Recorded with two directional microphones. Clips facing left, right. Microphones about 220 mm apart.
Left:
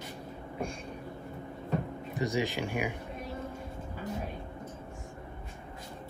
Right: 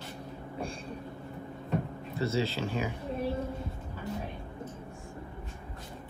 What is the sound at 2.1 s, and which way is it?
Speech, 15° left (ahead or behind).